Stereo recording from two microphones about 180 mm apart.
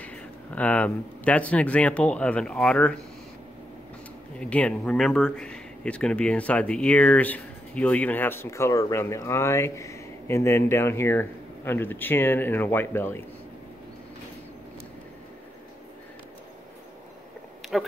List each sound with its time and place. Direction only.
0.0 s speech: 10° left (ahead or behind)
4.4 s speech: 5° left (ahead or behind)